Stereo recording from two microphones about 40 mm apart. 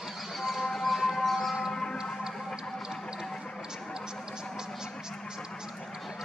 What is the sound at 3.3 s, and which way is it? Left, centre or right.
Music, centre.